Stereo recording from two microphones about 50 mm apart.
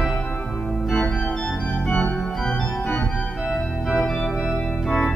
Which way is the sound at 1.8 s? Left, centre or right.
Left.